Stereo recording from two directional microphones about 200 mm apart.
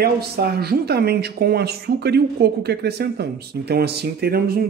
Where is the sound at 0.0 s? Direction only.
50° right (ahead or behind).